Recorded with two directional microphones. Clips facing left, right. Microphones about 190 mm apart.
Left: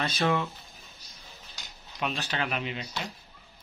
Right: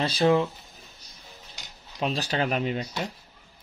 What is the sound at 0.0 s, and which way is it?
Speech, 30° right (ahead or behind).